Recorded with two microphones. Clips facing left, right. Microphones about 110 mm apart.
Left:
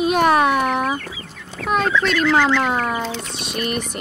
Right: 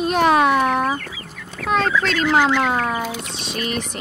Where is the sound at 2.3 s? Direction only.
15° right (ahead or behind).